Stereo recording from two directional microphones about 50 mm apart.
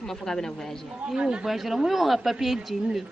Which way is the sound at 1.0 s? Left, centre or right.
Centre.